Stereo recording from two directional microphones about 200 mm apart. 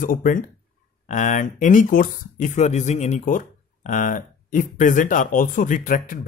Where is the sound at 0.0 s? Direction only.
40° left (ahead or behind).